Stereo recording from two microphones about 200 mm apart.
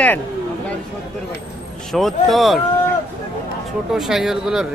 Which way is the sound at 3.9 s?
Centre (ahead or behind).